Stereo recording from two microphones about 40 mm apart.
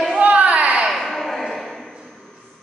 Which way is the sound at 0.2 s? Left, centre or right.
Right.